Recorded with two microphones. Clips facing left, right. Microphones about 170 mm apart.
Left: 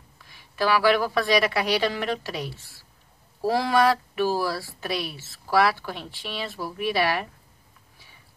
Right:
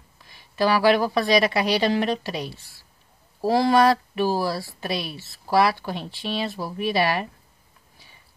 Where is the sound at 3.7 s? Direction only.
25° right (ahead or behind).